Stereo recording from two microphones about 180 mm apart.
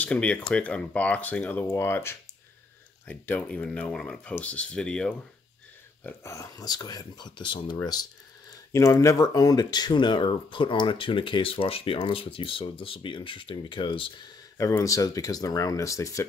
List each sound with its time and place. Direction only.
0.0 s speech: 5° left (ahead or behind)
6.0 s speech: 15° left (ahead or behind)